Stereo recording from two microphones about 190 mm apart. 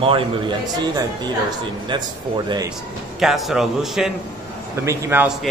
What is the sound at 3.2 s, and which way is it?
Speech, centre (ahead or behind).